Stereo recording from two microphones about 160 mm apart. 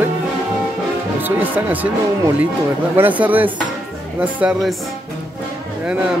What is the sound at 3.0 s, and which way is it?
Speech, 10° right (ahead or behind).